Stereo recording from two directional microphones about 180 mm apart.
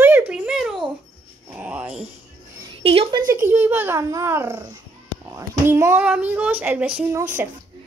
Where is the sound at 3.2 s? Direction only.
15° right (ahead or behind).